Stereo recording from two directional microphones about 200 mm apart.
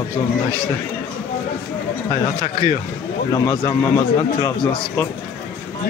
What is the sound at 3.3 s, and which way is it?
A man's voice, 15° left (ahead or behind).